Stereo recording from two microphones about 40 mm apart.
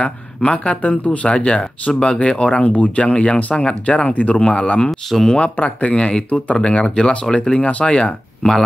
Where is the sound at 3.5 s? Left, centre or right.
Left.